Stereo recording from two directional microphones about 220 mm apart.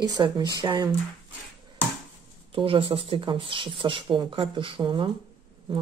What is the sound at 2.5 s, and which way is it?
Speech, 25° right (ahead or behind).